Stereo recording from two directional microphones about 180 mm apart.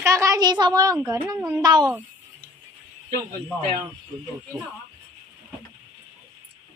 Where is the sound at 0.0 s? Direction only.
15° right (ahead or behind).